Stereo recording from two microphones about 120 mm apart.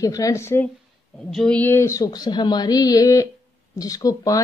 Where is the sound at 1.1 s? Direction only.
5° left (ahead or behind).